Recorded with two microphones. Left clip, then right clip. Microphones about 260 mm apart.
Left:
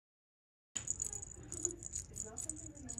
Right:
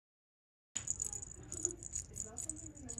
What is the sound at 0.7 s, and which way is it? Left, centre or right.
Coin, centre.